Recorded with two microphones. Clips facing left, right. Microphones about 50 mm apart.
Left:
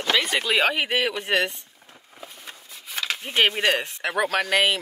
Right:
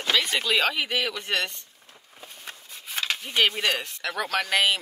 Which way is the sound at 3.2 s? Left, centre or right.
Left.